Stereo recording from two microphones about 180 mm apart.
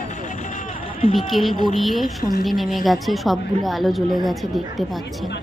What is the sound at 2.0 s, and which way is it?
Speech, 50° left (ahead or behind).